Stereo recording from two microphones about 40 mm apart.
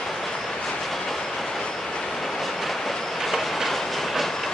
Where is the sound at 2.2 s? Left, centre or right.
Centre.